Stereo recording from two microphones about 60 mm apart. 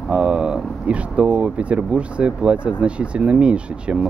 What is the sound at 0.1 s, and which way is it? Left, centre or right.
Speech, centre.